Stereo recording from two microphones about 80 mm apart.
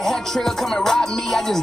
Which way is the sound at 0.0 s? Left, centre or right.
Centre.